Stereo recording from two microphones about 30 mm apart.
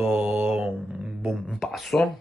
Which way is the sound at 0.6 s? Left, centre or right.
Right.